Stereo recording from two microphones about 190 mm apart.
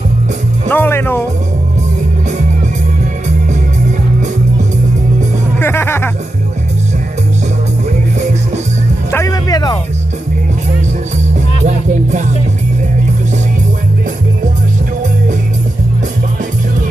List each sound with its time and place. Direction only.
0.7 s speech: 10° left (ahead or behind)
5.6 s speech: 10° left (ahead or behind)
9.1 s music: 15° left (ahead or behind)
11.6 s music: 40° right (ahead or behind)